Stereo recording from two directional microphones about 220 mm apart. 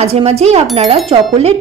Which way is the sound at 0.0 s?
30° right (ahead or behind).